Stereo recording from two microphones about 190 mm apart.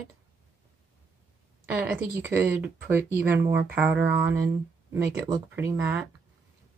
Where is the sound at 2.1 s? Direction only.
10° right (ahead or behind).